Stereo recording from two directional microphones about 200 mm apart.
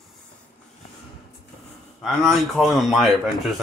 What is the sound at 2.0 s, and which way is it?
Speech, centre (ahead or behind).